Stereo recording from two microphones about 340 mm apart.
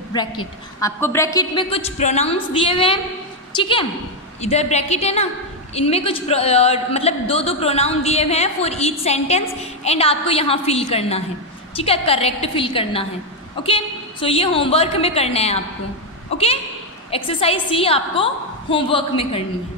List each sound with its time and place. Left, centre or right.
0.1 s a man's voice: centre